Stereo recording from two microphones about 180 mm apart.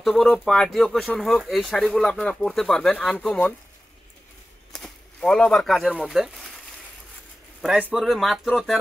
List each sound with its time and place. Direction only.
0.0 s speech: centre (ahead or behind)
4.7 s speech: 5° left (ahead or behind)
7.9 s speech: centre (ahead or behind)